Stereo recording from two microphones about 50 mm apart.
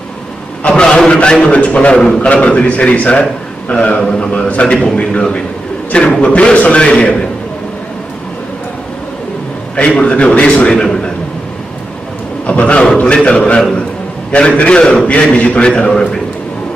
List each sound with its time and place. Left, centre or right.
0.7 s a man's voice: centre
2.0 s a man's voice: centre
2.2 s a man's voice: left
9.8 s a man's voice: left
12.4 s a man's voice: left